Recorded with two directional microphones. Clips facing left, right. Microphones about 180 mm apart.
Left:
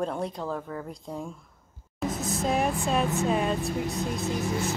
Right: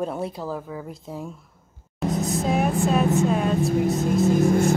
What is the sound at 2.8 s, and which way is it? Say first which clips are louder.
A woman's voice: right 6 dB; centre (ahead or behind).